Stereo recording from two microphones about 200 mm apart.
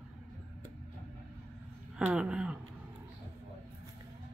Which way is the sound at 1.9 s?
5° right (ahead or behind).